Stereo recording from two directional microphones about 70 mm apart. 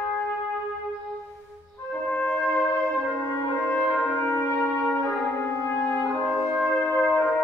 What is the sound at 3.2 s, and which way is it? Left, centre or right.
Brass instrument, left.